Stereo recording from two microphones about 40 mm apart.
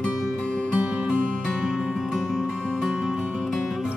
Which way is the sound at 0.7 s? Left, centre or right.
Right.